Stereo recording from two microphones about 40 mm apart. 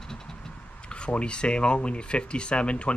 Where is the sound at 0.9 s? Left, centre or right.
Left.